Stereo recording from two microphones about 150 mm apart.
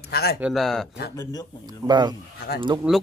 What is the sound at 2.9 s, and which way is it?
Speech, 5° right (ahead or behind).